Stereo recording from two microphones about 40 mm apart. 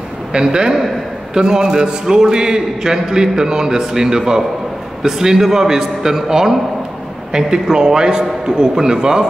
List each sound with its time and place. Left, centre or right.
0.3 s a man's voice: right